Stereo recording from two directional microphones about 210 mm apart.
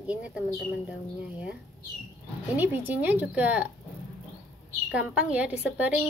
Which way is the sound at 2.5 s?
10° right (ahead or behind).